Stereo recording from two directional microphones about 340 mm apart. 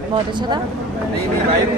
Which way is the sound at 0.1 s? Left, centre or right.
Centre.